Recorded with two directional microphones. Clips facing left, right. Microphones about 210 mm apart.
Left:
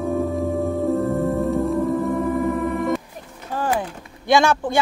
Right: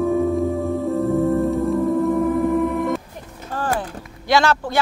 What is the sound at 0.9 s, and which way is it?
Music, centre (ahead or behind).